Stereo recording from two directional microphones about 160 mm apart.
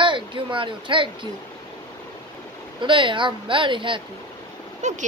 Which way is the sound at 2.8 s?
30° right (ahead or behind).